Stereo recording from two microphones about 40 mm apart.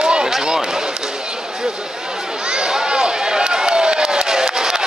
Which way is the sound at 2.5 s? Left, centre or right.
Centre.